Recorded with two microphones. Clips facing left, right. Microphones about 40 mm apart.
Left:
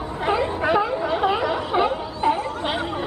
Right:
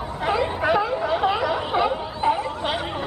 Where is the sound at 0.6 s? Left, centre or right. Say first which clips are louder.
Even; centre.